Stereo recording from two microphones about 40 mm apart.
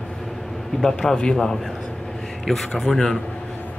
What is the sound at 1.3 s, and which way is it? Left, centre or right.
Speech, centre.